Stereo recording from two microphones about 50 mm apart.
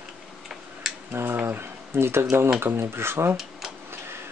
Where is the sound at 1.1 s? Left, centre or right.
Right.